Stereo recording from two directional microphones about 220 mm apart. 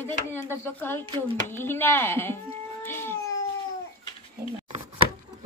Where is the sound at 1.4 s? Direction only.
10° left (ahead or behind).